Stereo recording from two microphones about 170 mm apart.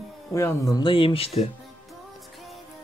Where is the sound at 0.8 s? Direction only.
30° left (ahead or behind).